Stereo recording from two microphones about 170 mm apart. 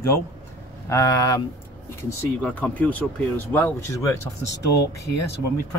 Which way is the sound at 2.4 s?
10° left (ahead or behind).